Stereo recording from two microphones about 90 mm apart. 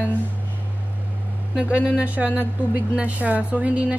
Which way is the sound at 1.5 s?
15° right (ahead or behind).